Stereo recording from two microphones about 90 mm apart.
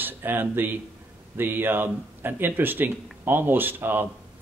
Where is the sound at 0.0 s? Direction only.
25° right (ahead or behind).